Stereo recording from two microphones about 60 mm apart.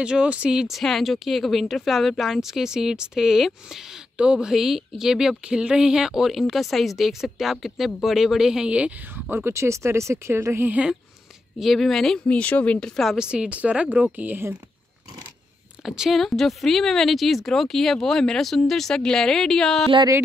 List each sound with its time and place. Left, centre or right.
0.0 s speech: centre
0.7 s speech: centre
9.1 s speech: right
9.5 s speech: right
11.6 s speech: centre
12.3 s speech: left
13.2 s speech: centre; by 14.4 s right
15.8 s speech: centre
16.2 s speech: centre